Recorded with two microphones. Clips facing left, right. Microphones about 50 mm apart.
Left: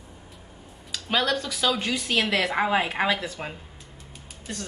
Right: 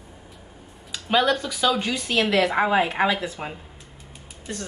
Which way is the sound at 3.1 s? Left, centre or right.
Centre.